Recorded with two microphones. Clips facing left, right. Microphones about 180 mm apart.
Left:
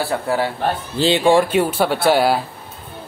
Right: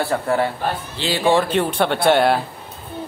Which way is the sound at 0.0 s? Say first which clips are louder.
Right 1 dB; 5° left (ahead or behind).